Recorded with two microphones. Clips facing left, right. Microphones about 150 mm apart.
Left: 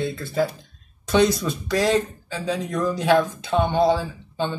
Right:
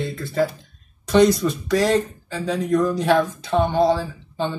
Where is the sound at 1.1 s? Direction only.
Centre (ahead or behind).